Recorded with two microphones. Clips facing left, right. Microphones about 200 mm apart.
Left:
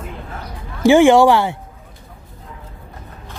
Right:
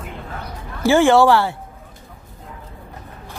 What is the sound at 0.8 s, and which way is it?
Speech, 20° left (ahead or behind).